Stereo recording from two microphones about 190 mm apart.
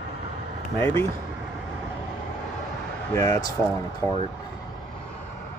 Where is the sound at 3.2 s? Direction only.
20° left (ahead or behind).